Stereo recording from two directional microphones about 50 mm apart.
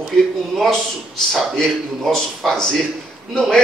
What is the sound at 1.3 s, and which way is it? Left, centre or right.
A man's voice, centre.